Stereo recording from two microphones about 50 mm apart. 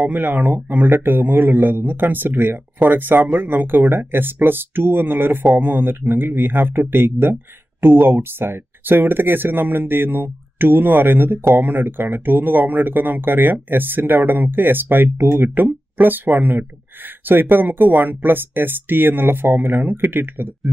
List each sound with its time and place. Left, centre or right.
0.0 s speech: right